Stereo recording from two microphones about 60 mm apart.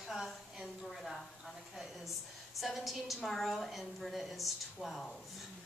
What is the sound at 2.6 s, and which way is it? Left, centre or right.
A woman's voice, centre.